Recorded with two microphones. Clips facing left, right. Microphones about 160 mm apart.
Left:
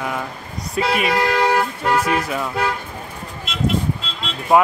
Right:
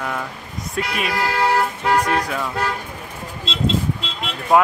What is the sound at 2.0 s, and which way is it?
Speech, 5° left (ahead or behind).